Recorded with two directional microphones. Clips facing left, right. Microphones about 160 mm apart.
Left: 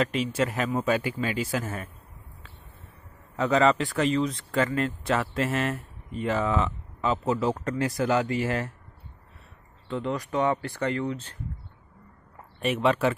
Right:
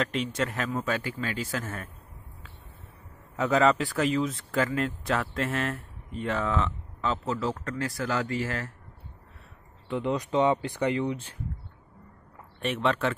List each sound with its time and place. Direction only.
0.0 s speech: 5° left (ahead or behind)
3.3 s speech: centre (ahead or behind); by 8.7 s 20° left (ahead or behind)
9.8 s speech: 15° right (ahead or behind)
12.5 s speech: 5° left (ahead or behind)